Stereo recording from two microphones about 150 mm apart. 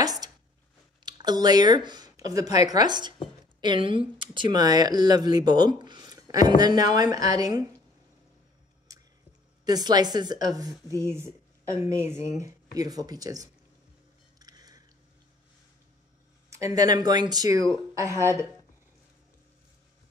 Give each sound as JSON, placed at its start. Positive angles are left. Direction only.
{"t": 0.0, "sound": "a sound", "side_deg": -25}
{"t": 1.0, "sound": "speech", "side_deg": -30}
{"t": 8.9, "sound": "squish", "side_deg": -25}
{"t": 9.7, "sound": "speech", "side_deg": -25}
{"t": 14.4, "sound": "a sound", "side_deg": -25}
{"t": 16.4, "sound": "speech", "side_deg": -20}